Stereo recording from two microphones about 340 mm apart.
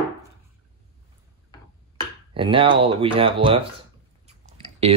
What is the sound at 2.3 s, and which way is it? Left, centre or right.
Speech, centre.